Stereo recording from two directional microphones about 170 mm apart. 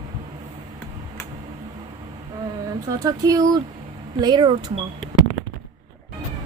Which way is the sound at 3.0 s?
20° right (ahead or behind).